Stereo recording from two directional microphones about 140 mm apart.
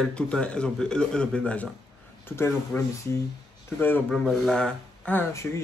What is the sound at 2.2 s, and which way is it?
Speech, 20° left (ahead or behind).